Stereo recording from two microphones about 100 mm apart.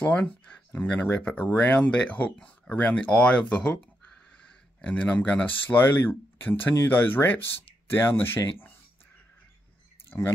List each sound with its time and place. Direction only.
0.0 s speech: 15° left (ahead or behind)
4.8 s speech: 15° left (ahead or behind)
10.0 s a sound: 25° left (ahead or behind)